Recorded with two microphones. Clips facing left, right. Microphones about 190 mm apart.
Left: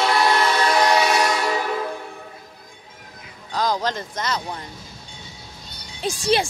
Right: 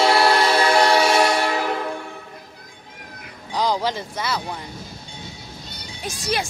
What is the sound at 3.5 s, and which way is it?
Speech, 15° right (ahead or behind).